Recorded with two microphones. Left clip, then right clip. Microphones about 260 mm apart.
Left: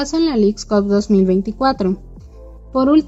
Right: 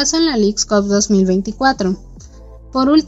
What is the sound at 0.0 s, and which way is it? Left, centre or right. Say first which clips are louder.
A woman's voice: right 1 dB; right.